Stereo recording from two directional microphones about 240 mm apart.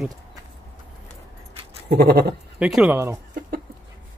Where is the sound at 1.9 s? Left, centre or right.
Right.